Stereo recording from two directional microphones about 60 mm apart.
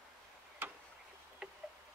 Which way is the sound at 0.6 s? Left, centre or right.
Right.